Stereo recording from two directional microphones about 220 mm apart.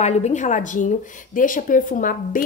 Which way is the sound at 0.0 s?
30° left (ahead or behind).